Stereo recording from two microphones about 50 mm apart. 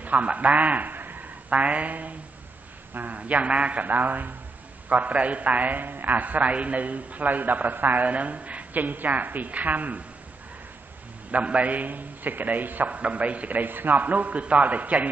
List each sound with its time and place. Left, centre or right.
0.0 s a man's voice: right
3.8 s a man's voice: right
11.3 s a man's voice: right